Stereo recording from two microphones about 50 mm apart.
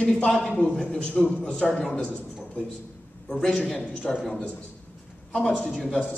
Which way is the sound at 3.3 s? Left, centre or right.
Centre.